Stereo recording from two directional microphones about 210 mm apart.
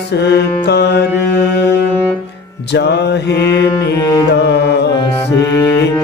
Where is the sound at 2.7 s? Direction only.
50° left (ahead or behind).